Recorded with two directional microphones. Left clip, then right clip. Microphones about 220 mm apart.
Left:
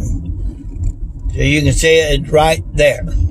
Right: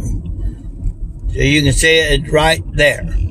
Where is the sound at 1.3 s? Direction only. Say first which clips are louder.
Right 1 dB; 10° left (ahead or behind).